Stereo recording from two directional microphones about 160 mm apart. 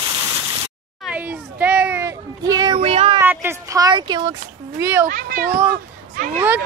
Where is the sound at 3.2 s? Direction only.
15° right (ahead or behind).